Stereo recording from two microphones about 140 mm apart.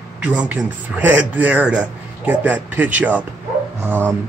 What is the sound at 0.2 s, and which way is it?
Speech, 10° right (ahead or behind).